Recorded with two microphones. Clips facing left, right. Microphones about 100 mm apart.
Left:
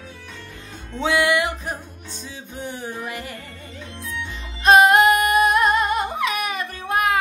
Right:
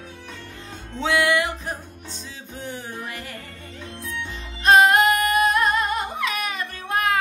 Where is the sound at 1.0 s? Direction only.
15° left (ahead or behind).